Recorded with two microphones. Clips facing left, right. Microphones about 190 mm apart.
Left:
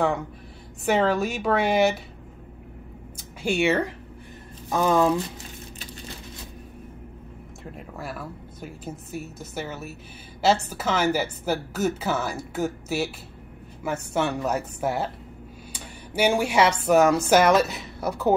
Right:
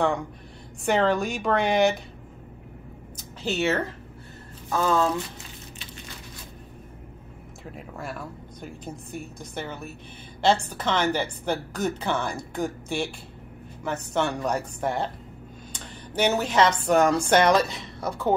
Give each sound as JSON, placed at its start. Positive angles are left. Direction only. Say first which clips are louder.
{"t": 0.0, "sound": "a woman's voice", "louder": "even", "side_deg": 5}
{"t": 3.2, "sound": "speech", "louder": "left 3 dB", "side_deg": 10}
{"t": 7.7, "sound": "a woman's voice", "louder": "even", "side_deg": 0}